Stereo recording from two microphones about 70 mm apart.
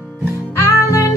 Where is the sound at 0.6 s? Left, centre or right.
Left.